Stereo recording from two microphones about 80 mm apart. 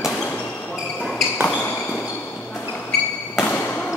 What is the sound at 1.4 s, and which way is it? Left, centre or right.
Basketball bounce, left.